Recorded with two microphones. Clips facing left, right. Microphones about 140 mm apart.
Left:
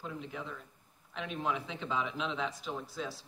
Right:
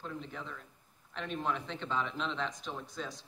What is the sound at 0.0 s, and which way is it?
A man's voice, 5° left (ahead or behind).